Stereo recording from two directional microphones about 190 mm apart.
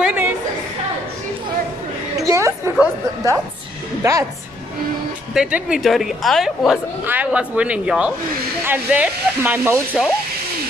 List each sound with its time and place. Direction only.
0.0 s chatter: 10° right (ahead or behind)
2.1 s a sound: 15° right (ahead or behind)
4.0 s a woman's voice: 15° right (ahead or behind)
5.3 s a woman's voice: 5° right (ahead or behind)